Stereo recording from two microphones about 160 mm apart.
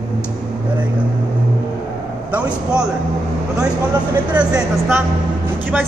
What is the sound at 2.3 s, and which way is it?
Speech, 5° right (ahead or behind).